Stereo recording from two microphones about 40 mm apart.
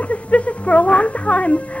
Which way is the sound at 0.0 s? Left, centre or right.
Left.